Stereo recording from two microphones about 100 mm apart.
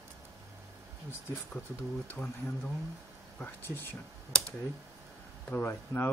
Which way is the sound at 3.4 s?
25° left (ahead or behind).